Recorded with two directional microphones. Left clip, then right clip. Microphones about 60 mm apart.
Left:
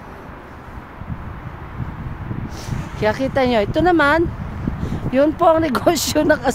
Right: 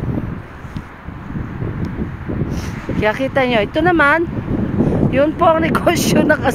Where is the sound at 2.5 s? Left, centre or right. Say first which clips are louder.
Right 6 dB; left.